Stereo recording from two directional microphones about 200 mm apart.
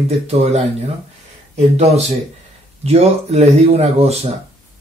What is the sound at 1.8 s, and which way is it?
Speech, 30° right (ahead or behind).